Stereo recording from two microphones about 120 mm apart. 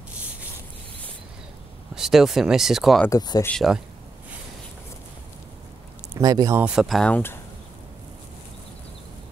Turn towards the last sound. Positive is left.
turn(degrees=15)  # may be behind; listen again after turning